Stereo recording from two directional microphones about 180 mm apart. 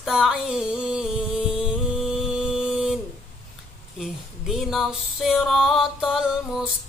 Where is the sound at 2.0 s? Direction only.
Centre (ahead or behind).